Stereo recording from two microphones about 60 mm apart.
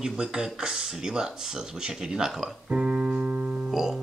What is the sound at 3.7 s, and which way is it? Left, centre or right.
Music, centre.